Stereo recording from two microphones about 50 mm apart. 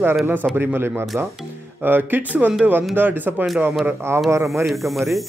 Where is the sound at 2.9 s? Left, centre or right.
Right.